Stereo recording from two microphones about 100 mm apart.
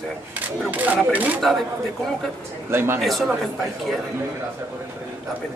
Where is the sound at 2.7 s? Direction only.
25° right (ahead or behind).